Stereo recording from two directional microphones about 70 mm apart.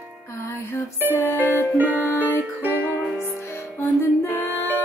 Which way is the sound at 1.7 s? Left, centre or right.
Right.